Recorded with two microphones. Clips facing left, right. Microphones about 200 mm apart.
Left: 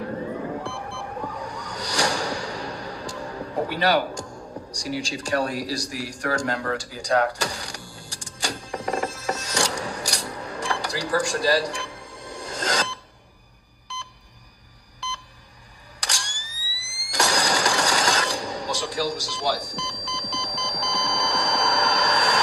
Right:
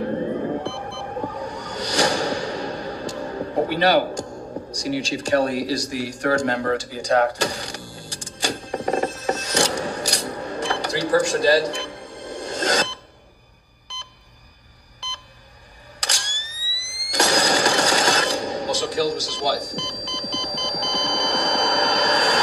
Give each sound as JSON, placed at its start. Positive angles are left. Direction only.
{"t": 0.0, "sound": "music", "side_deg": -30}
{"t": 8.7, "sound": "telephone", "side_deg": -25}
{"t": 9.4, "sound": "dishes", "side_deg": -25}
{"t": 16.0, "sound": "camera", "side_deg": -20}
{"t": 17.1, "sound": "a sound", "side_deg": -25}